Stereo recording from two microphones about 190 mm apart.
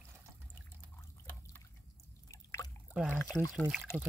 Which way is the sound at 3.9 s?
15° left (ahead or behind).